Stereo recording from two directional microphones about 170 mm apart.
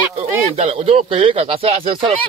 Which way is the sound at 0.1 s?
35° right (ahead or behind).